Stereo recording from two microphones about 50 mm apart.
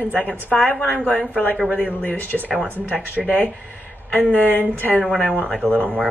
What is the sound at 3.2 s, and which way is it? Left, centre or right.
Speech, centre.